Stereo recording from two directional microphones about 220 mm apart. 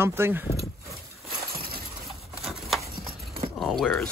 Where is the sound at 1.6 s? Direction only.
45° right (ahead or behind).